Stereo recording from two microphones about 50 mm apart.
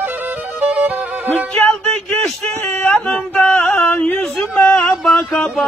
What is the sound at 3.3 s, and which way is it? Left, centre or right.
Music, left.